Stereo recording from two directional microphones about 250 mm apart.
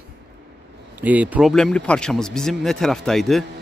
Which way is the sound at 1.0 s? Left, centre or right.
Centre.